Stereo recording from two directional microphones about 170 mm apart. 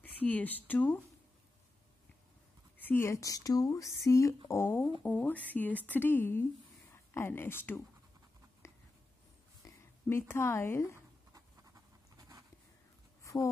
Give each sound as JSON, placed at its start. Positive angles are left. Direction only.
{"t": 0.0, "sound": "speech", "side_deg": 10}
{"t": 2.8, "sound": "speech", "side_deg": 15}
{"t": 9.7, "sound": "speech", "side_deg": 15}
{"t": 11.3, "sound": "pant", "side_deg": -20}
{"t": 13.2, "sound": "a sound", "side_deg": 20}